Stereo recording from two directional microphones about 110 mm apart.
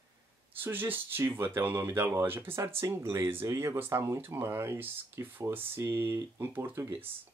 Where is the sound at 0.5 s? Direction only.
20° right (ahead or behind).